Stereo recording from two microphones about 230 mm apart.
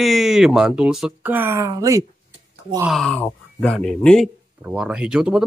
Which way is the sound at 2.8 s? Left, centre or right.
Centre.